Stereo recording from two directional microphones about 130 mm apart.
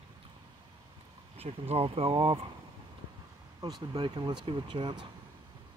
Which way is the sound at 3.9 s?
35° right (ahead or behind).